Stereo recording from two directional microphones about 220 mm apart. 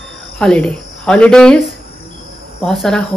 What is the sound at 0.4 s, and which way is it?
Speech, 5° left (ahead or behind).